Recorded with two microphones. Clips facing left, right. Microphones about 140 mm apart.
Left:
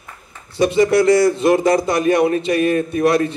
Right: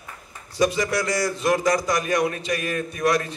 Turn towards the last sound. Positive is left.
turn(degrees=25)  # may be behind; listen again after turning